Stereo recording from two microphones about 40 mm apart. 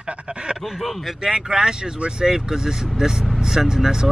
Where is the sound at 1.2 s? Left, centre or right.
Centre.